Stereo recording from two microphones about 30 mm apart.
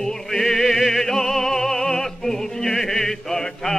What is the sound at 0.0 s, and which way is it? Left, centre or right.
Music, centre.